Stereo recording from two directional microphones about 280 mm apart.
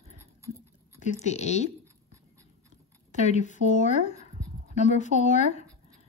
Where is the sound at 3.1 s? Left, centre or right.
Left.